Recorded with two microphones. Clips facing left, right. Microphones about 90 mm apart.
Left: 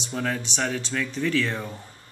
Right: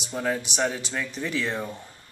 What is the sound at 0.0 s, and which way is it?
Speech, 15° right (ahead or behind).